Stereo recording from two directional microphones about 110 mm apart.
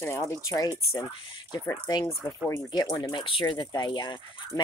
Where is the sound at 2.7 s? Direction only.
30° left (ahead or behind).